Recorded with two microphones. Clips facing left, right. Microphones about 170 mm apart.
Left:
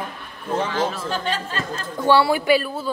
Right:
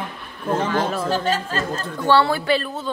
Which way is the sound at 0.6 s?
45° right (ahead or behind).